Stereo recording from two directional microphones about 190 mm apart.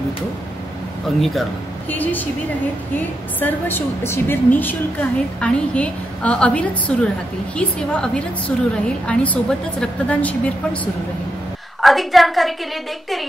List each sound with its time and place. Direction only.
1.9 s a woman's voice: 10° left (ahead or behind)
3.3 s a woman's voice: 10° left (ahead or behind)
11.8 s a woman's voice: centre (ahead or behind)